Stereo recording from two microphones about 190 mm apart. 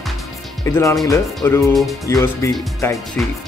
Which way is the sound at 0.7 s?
15° left (ahead or behind).